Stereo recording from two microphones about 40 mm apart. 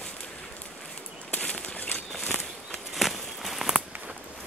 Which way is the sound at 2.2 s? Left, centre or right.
Left.